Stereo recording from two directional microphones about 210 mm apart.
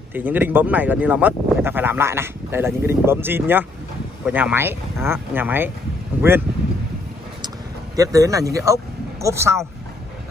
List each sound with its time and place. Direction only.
0.1 s speech: 10° right (ahead or behind)
7.4 s vehicle: 15° right (ahead or behind)
9.2 s speech: 15° right (ahead or behind)